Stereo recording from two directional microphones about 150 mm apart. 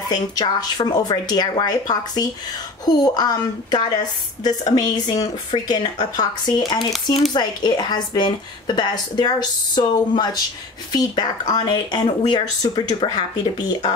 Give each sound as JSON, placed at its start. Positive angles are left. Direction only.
{"t": 0.1, "sound": "a woman's voice", "side_deg": 25}